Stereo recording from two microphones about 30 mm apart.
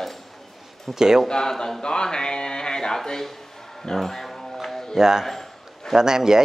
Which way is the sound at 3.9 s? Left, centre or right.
Centre.